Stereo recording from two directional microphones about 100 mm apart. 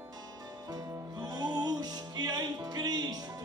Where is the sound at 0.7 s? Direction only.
40° right (ahead or behind).